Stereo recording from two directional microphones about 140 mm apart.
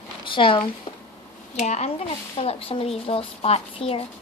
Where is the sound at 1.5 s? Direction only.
55° left (ahead or behind).